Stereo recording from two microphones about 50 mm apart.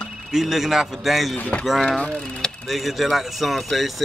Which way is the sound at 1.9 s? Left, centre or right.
Centre.